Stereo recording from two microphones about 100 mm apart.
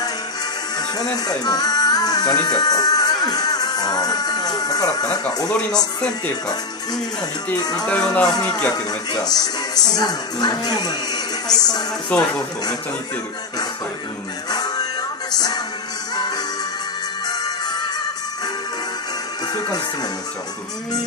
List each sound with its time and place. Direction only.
1.1 s speech: 40° left (ahead or behind)
7.5 s a man's voice: 40° left (ahead or behind)
7.8 s music: 5° left (ahead or behind)
8.7 s a man's voice: 40° left (ahead or behind)
12.1 s music: 15° left (ahead or behind)
14.5 s music: 40° left (ahead or behind)
19.4 s speech: 45° left (ahead or behind)